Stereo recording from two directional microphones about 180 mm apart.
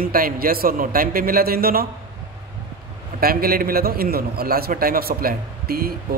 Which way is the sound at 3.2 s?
55° right (ahead or behind).